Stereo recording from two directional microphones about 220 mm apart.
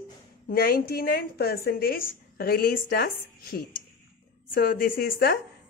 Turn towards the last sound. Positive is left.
turn(degrees=45)  # may be behind; listen again after turning